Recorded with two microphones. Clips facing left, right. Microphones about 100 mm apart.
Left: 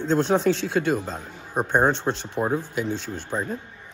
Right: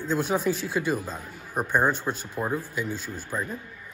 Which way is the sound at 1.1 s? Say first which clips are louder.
Left 3 dB; 25° left (ahead or behind).